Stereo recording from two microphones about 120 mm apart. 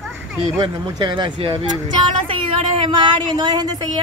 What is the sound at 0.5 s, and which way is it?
Speech, 40° right (ahead or behind).